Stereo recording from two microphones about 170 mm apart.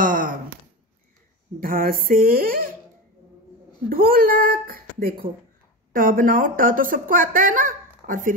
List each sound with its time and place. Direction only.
0.0 s a sound: 55° right (ahead or behind)
1.6 s speech: 60° right (ahead or behind)
3.9 s a woman's voice: 55° right (ahead or behind)